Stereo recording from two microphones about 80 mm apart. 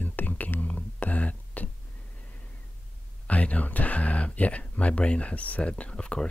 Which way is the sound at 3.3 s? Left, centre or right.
Centre.